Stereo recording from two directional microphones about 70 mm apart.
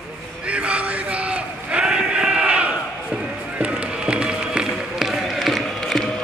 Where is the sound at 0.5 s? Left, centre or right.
Centre.